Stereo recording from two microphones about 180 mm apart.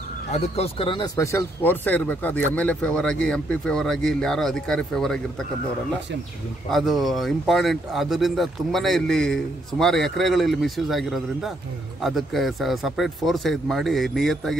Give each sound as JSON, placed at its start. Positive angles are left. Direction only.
{"t": 0.3, "sound": "speech", "side_deg": 35}
{"t": 6.7, "sound": "speech", "side_deg": 0}